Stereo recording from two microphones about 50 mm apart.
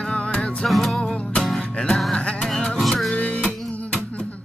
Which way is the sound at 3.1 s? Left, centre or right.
Left.